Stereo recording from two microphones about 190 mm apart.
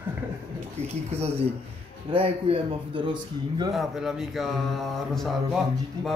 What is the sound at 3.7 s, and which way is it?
Speech, centre (ahead or behind).